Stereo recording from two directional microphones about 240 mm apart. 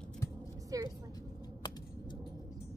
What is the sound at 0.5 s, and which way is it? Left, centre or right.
Vehicle, centre.